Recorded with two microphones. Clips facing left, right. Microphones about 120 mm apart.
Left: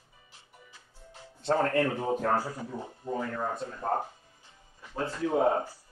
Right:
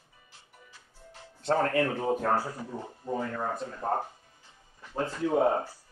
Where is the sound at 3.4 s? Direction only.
10° right (ahead or behind).